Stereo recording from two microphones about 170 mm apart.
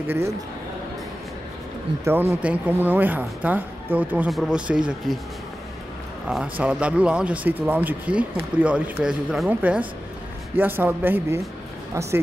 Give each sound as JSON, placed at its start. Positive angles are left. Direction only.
{"t": 2.0, "sound": "speech", "side_deg": -15}
{"t": 6.2, "sound": "speech", "side_deg": -5}